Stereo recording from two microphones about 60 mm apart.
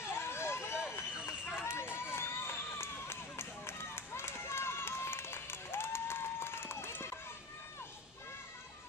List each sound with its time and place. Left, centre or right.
0.0 s a sound: left
1.4 s run: left
1.7 s run: left